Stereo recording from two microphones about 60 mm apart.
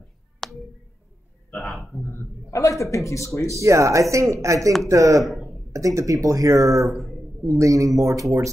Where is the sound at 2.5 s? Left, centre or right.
Left.